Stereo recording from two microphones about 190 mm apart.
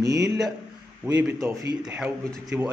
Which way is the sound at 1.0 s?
10° right (ahead or behind).